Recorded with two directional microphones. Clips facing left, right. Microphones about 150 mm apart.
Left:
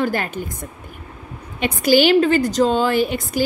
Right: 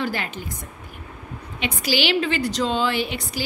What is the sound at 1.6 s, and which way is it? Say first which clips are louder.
A woman's voice: left 9 dB; 45° left (ahead or behind).